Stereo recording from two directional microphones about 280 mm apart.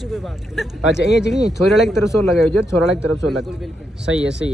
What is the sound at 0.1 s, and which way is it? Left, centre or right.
A man's voice, centre.